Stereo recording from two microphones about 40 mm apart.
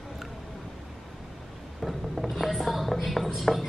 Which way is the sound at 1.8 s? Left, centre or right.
Centre.